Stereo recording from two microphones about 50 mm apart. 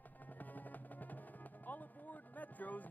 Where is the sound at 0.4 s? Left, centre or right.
Left.